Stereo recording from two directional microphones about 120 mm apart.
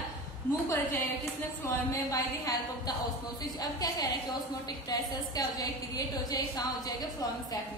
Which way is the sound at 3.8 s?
35° left (ahead or behind).